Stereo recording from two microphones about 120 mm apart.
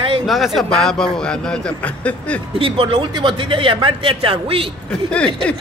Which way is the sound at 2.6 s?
50° right (ahead or behind).